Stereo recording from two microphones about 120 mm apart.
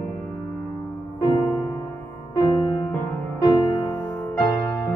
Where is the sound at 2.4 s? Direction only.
30° left (ahead or behind).